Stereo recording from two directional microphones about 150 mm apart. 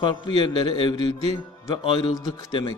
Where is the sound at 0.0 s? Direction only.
35° left (ahead or behind).